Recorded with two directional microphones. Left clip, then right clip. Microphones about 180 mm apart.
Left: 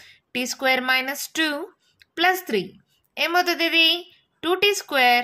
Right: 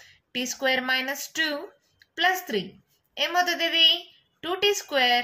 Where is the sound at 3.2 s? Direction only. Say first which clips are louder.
Left 3 dB; 45° left (ahead or behind).